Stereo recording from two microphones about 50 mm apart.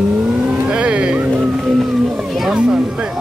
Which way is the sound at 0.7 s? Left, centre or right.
Right.